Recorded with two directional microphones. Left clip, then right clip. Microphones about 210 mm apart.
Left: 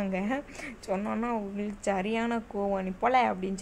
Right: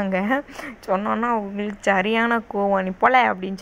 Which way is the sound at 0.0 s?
15° right (ahead or behind).